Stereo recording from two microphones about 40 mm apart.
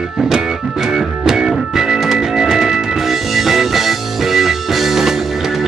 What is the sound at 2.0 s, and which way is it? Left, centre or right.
Music, centre.